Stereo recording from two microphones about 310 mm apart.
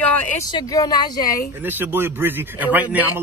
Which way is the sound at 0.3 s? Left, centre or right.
Centre.